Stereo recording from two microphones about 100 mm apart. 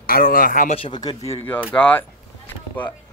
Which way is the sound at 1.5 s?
15° left (ahead or behind).